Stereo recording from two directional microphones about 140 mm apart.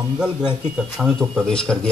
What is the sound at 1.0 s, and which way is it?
Speech, 5° right (ahead or behind).